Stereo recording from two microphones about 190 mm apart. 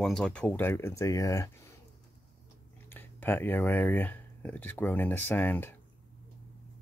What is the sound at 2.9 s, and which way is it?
Speech, 10° left (ahead or behind).